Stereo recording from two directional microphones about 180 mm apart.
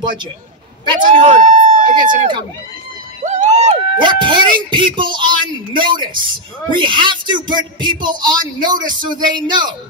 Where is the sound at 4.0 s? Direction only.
25° right (ahead or behind).